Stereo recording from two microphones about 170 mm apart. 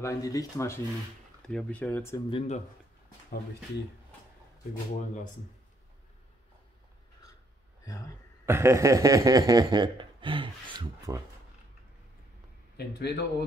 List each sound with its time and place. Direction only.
0.0 s speech: 20° left (ahead or behind)
1.4 s speech: 5° left (ahead or behind)
2.2 s speech: 35° left (ahead or behind)
8.5 s speech: 15° right (ahead or behind)
12.7 s speech: 70° left (ahead or behind)